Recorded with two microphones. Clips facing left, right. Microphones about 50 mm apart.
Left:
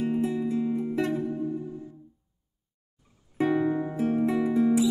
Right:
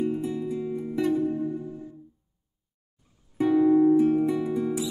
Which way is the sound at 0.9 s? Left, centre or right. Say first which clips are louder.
Right 6 dB; left.